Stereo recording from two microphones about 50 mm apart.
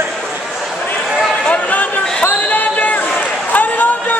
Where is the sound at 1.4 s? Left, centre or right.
Left.